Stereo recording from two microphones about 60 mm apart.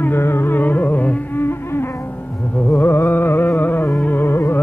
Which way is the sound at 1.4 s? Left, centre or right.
Left.